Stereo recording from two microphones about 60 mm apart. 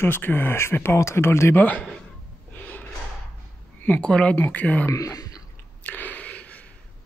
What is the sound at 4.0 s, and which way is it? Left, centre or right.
Speech, centre.